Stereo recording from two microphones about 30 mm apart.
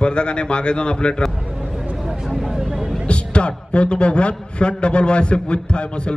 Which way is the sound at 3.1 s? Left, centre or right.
Left.